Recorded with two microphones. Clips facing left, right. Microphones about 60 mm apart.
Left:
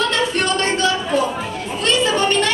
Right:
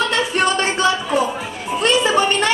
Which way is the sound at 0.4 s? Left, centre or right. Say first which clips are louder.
Right 4 dB; centre.